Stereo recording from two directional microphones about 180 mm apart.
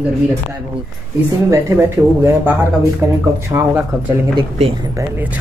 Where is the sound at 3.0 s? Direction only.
15° right (ahead or behind).